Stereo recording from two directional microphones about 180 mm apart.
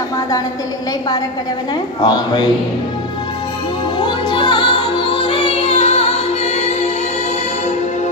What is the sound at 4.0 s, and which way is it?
Music, 25° left (ahead or behind).